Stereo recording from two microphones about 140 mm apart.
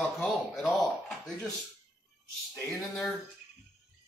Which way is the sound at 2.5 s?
5° left (ahead or behind).